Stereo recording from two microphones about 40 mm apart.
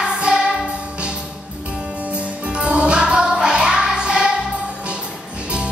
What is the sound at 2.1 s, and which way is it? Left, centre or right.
Music, right.